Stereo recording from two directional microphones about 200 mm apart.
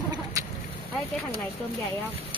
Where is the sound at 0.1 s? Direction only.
15° right (ahead or behind).